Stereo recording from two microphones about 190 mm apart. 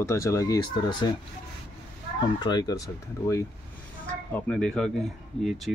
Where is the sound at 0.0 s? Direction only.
15° left (ahead or behind).